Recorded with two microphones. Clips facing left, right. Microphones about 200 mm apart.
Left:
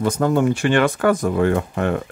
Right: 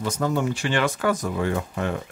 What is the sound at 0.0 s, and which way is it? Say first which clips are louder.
Speech: left 6 dB; 55° left (ahead or behind).